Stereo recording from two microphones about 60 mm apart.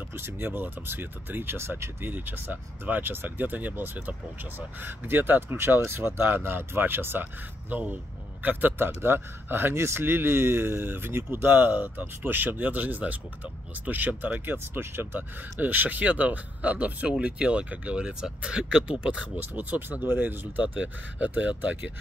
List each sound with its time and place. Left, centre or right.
0.1 s speech: right